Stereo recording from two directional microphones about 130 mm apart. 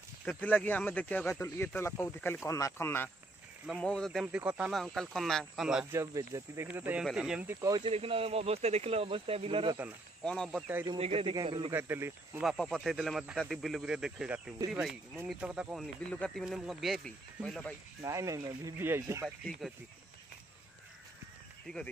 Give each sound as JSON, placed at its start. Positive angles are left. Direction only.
{"t": 0.2, "sound": "speech", "side_deg": 10}
{"t": 3.6, "sound": "speech", "side_deg": 5}
{"t": 4.3, "sound": "speech", "side_deg": -10}
{"t": 4.6, "sound": "speech", "side_deg": 0}
{"t": 5.9, "sound": "speech", "side_deg": -20}
{"t": 7.8, "sound": "speech", "side_deg": -45}
{"t": 10.2, "sound": "speech", "side_deg": 5}
{"t": 11.0, "sound": "speech", "side_deg": -50}
{"t": 11.7, "sound": "speech", "side_deg": -15}
{"t": 12.4, "sound": "speech", "side_deg": 0}
{"t": 16.1, "sound": "speech", "side_deg": 5}
{"t": 18.0, "sound": "speech", "side_deg": -25}
{"t": 19.2, "sound": "speech", "side_deg": 0}